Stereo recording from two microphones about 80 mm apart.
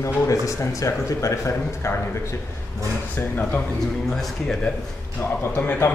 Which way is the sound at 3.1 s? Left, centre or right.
Left.